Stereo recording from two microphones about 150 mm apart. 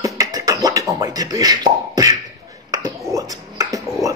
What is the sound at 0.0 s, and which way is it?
Beatboxing, 25° right (ahead or behind).